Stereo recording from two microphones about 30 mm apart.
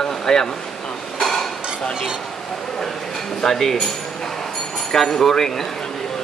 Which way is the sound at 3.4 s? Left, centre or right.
Centre.